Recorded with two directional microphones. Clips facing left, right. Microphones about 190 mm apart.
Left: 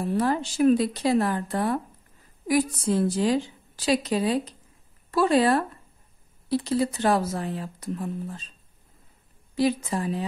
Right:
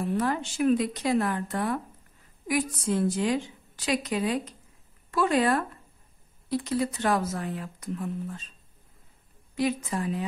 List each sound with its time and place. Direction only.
0.0 s a woman's voice: 35° left (ahead or behind)
9.6 s a woman's voice: 30° left (ahead or behind)